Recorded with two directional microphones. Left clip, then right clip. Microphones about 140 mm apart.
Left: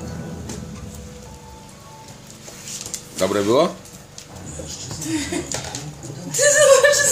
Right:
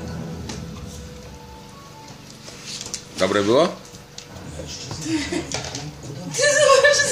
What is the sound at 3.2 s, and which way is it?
Speech, 10° left (ahead or behind).